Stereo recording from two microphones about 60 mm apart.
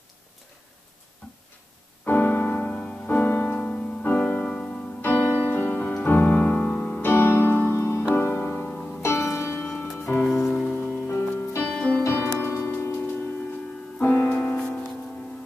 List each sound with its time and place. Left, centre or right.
1.2 s tick-tock: centre
2.0 s piano: left
4.2 s music: left
8.6 s music: centre
9.0 s music: left
11.6 s music: centre
12.0 s music: left
12.4 s music: left
14.0 s music: left
14.4 s music: centre